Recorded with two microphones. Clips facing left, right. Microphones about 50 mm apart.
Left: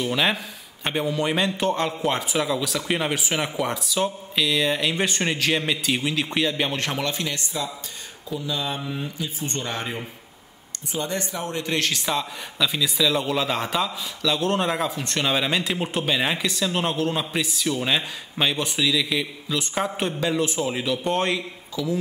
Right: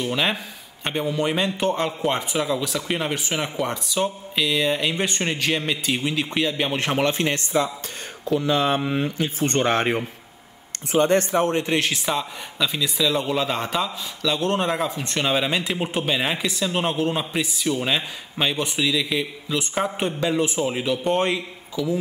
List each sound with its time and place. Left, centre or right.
0.0 s speech: centre
6.7 s speech: centre
7.1 s speech: right
8.3 s speech: right
11.5 s a man's voice: right